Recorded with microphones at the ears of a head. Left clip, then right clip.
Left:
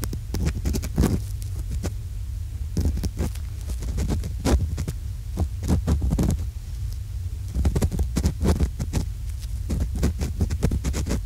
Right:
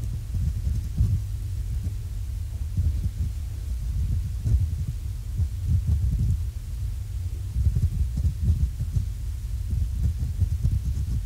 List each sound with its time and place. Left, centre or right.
0.0 s throbbing: left
2.7 s throbbing: left
5.3 s heart sounds: left
7.5 s throbbing: left
9.7 s a sound: left